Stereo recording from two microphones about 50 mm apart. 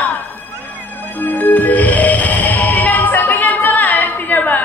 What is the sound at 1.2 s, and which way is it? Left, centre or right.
Music, left.